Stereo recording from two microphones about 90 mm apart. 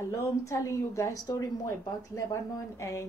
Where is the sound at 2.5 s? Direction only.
35° left (ahead or behind).